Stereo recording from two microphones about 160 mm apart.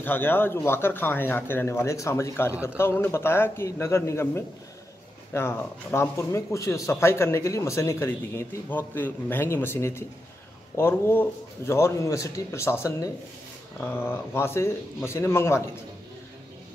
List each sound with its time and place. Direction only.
0.0 s speech: 10° left (ahead or behind)